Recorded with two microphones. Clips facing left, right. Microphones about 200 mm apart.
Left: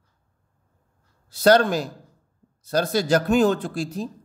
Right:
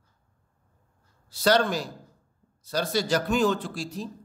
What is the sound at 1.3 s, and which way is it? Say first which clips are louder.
Speech: left 6 dB; 50° left (ahead or behind).